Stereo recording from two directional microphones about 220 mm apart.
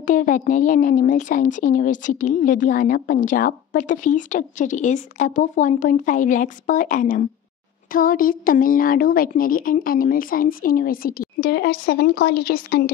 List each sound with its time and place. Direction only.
0.0 s a woman's voice: 35° left (ahead or behind)